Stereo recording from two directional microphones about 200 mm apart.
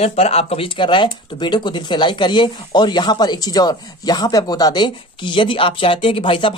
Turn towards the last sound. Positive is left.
turn(degrees=25)  # may be behind; listen again after turning